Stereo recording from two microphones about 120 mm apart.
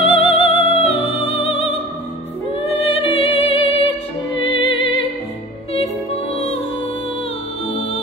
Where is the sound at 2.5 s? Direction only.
50° left (ahead or behind).